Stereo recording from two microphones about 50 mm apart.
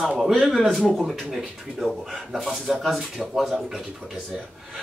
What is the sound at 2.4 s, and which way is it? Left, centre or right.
Speech, centre.